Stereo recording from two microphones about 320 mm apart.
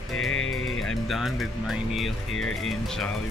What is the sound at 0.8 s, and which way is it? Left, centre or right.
Speech, centre.